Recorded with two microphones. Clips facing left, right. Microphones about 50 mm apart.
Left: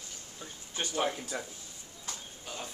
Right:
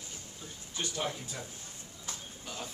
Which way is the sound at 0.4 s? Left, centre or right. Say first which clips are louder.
Left 2 dB; left.